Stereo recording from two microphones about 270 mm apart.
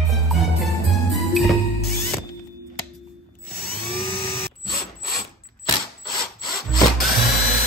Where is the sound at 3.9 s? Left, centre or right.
Centre.